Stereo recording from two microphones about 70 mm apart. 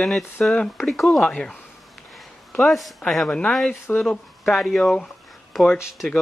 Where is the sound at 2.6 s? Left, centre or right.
Centre.